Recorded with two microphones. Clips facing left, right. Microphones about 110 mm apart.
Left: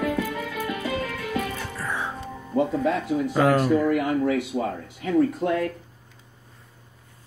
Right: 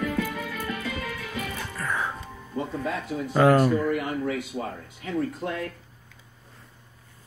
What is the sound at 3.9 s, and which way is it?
Speech, 80° left.